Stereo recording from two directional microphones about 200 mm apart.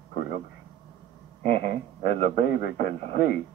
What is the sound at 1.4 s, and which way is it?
A man's voice, 55° left (ahead or behind).